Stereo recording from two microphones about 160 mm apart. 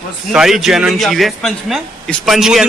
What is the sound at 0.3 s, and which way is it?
Speech, 5° right (ahead or behind).